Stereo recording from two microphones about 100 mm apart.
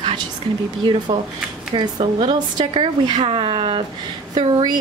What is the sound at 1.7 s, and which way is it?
Speech, 55° right (ahead or behind).